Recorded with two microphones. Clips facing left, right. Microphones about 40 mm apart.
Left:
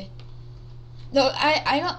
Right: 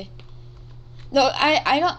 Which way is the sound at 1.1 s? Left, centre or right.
Right.